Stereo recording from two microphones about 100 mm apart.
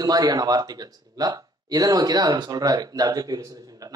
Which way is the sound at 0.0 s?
40° right (ahead or behind).